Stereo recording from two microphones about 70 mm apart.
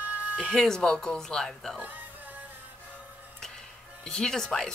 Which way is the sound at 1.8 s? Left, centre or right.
Right.